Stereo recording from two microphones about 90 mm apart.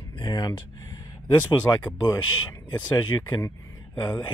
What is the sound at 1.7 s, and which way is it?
Speech, 30° left (ahead or behind).